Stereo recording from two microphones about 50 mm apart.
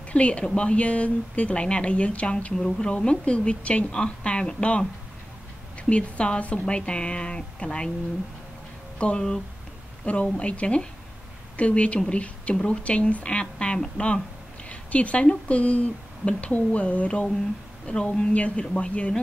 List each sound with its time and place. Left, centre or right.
0.1 s speech: left
8.9 s speech: left
10.3 s speech: left